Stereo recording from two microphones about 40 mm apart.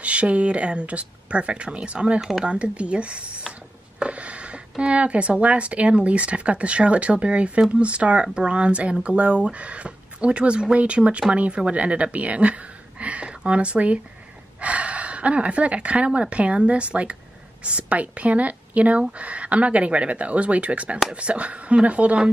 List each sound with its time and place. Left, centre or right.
0.0 s speech: right